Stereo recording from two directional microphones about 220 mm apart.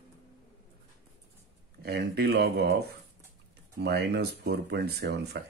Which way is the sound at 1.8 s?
50° right (ahead or behind).